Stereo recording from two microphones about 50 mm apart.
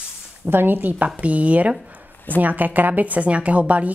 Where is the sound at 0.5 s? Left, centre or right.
Right.